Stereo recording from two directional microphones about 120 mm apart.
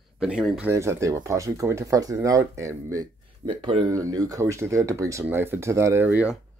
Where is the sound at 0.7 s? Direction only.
25° right (ahead or behind).